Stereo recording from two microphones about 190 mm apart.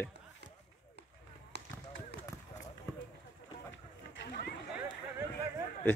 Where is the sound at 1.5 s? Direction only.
60° right (ahead or behind).